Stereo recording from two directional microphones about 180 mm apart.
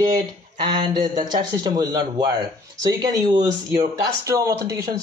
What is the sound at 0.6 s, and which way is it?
Speech, 25° right (ahead or behind).